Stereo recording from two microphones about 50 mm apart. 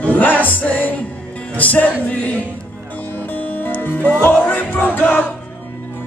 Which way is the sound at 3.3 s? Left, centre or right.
Left.